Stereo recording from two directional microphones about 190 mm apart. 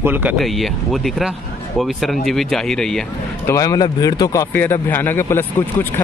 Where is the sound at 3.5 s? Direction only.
15° left (ahead or behind).